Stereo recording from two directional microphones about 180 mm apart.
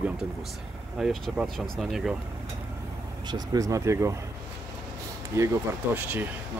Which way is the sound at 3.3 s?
20° right (ahead or behind).